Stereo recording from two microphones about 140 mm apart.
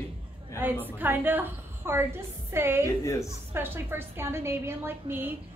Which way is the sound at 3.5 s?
15° right (ahead or behind).